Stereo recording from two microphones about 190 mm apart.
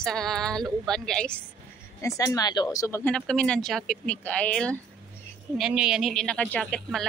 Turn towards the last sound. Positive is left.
turn(degrees=0)  # may be behind; listen again after turning